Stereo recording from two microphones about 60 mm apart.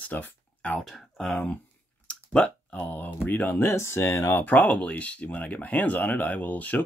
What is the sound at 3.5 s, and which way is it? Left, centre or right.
Speech, left.